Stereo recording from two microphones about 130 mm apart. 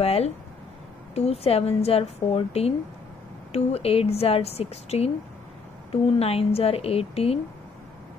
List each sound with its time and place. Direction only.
0.0 s a woman's voice: 50° left (ahead or behind)